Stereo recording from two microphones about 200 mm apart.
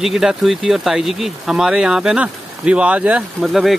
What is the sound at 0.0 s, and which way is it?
Speech, centre (ahead or behind).